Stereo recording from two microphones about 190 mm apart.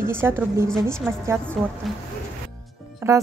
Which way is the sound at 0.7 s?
5° left (ahead or behind).